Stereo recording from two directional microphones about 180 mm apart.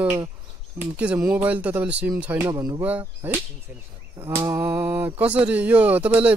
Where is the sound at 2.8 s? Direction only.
10° right (ahead or behind).